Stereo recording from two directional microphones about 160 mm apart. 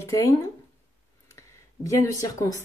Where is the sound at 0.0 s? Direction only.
20° left (ahead or behind).